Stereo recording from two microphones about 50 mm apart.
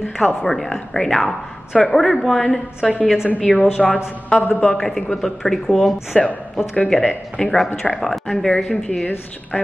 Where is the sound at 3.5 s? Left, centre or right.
Left.